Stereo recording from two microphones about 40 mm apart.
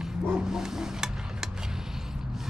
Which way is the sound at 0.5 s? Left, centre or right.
Centre.